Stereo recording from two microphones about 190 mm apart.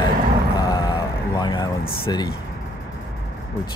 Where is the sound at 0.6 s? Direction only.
20° left (ahead or behind).